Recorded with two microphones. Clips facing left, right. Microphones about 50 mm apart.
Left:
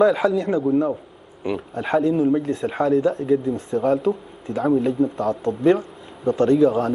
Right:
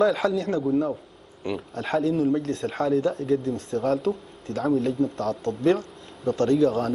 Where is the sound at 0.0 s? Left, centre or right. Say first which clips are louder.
Left 4 dB; centre.